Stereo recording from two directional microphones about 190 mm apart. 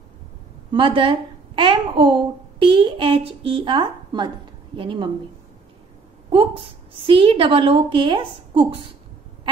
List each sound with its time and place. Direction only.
0.7 s a child's voice: 25° right (ahead or behind)
6.3 s a woman's voice: 30° right (ahead or behind)